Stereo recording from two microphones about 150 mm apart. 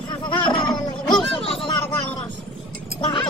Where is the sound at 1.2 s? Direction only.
Centre (ahead or behind).